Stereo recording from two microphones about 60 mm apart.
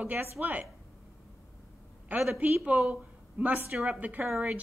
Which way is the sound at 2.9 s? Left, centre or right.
Right.